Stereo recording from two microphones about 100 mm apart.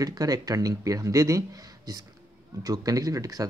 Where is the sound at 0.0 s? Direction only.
40° right (ahead or behind).